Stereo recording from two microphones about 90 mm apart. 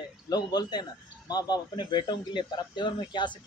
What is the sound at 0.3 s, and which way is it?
A man's voice, 50° left (ahead or behind).